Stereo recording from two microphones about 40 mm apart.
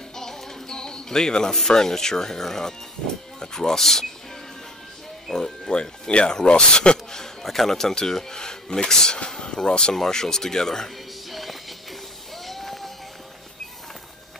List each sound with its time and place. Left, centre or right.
0.1 s speech: centre
5.3 s speech: centre
5.8 s speech: left
7.4 s speech: centre
11.2 s music: centre
12.4 s a sound: centre